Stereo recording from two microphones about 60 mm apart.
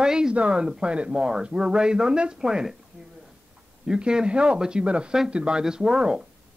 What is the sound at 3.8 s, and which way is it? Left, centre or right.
Speech, centre.